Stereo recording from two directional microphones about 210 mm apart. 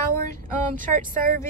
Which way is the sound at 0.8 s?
40° right (ahead or behind).